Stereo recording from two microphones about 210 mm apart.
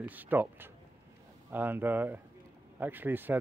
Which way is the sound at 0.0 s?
10° right (ahead or behind).